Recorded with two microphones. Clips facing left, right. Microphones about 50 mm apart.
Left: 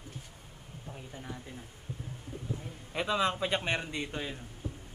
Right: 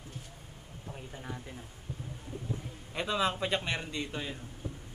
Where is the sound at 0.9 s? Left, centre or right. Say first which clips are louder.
Right 1 dB; centre.